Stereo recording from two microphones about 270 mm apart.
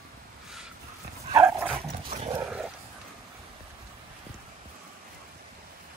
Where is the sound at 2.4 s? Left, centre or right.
Centre.